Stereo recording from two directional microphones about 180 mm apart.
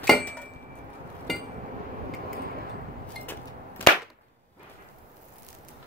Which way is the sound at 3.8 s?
10° left (ahead or behind).